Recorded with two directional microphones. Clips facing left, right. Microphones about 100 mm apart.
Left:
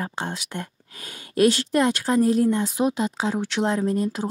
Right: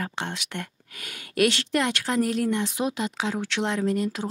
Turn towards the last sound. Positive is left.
turn(degrees=25)  # may be behind; listen again after turning